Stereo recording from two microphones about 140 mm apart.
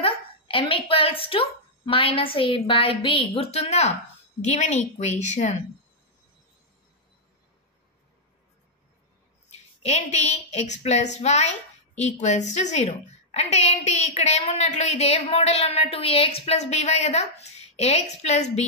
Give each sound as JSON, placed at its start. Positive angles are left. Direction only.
{"t": 0.0, "sound": "a woman's voice", "side_deg": 40}
{"t": 9.5, "sound": "a woman's voice", "side_deg": 50}